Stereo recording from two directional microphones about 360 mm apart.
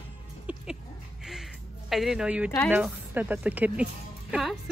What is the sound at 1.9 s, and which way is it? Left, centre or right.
Speech, centre.